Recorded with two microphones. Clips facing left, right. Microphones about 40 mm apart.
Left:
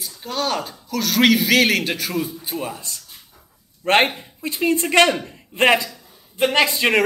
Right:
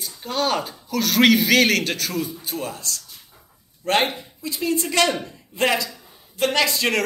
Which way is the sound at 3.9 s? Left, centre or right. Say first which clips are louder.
Left 4 dB; left.